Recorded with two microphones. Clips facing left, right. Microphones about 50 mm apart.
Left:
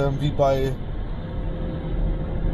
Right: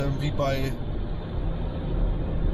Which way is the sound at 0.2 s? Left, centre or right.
Right.